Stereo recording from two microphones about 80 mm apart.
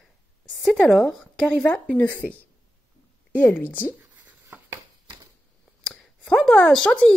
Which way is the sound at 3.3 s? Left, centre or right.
Left.